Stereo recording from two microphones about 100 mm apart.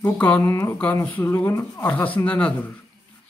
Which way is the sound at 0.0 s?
20° left (ahead or behind).